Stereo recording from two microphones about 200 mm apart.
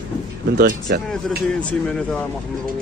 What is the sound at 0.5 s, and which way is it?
Speech, 55° right (ahead or behind).